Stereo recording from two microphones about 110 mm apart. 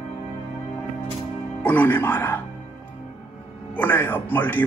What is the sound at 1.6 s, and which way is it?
Speech, 15° left (ahead or behind).